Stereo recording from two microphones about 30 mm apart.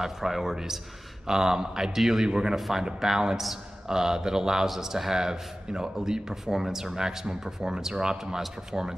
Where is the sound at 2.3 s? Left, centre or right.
Right.